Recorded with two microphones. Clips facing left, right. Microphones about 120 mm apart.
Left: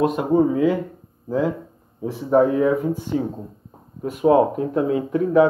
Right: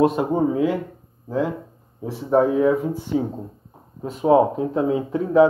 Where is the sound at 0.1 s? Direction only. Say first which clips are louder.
Left 2 dB; centre (ahead or behind).